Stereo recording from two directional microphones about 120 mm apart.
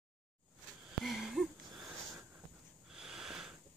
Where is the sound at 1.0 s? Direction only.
Centre (ahead or behind).